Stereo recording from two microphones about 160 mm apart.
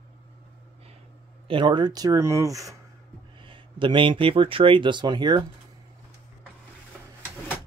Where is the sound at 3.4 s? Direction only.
30° right (ahead or behind).